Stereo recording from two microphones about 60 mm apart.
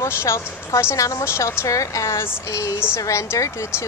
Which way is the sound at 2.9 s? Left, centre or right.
Left.